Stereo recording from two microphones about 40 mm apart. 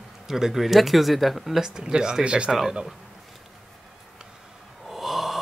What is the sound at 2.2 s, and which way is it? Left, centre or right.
Speech, right.